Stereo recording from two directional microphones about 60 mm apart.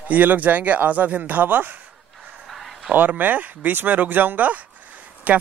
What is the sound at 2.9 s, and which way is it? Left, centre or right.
Speech, right.